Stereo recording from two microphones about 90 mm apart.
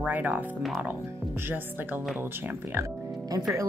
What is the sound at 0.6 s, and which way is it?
Speech, centre (ahead or behind).